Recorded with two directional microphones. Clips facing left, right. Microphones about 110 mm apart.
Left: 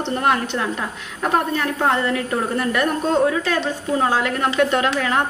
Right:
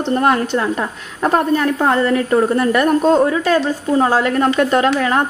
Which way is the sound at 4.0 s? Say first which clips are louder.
Right 5 dB; 40° right (ahead or behind).